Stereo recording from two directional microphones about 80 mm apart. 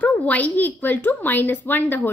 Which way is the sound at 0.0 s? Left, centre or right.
Centre.